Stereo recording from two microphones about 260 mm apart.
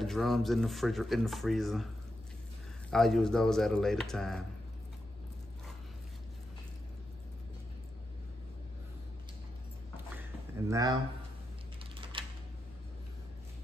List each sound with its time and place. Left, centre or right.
0.0 s speech: centre
2.9 s speech: centre
10.7 s speech: centre
12.1 s a sound: centre